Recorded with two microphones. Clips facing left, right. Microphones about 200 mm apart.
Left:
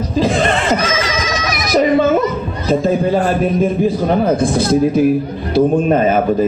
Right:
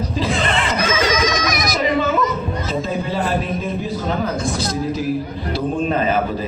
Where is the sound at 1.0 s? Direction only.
40° right (ahead or behind).